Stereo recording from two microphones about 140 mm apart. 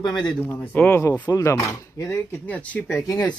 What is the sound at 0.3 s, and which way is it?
Speech, 15° left (ahead or behind).